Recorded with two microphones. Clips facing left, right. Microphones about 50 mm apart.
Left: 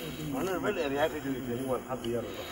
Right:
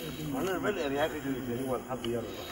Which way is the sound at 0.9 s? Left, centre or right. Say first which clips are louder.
Left 1 dB; centre.